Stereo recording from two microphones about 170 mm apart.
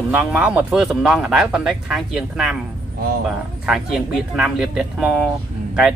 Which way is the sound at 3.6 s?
Centre (ahead or behind).